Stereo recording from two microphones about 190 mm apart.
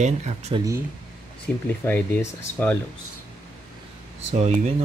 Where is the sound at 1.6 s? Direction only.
10° left (ahead or behind).